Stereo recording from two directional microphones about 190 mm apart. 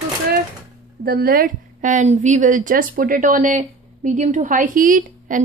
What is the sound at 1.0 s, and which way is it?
A woman's voice, 55° right (ahead or behind).